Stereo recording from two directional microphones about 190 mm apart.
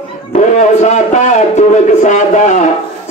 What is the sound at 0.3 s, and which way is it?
A man's voice, 35° left (ahead or behind).